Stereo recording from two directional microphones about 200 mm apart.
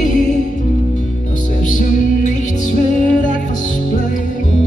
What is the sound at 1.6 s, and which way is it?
Music, 40° left (ahead or behind).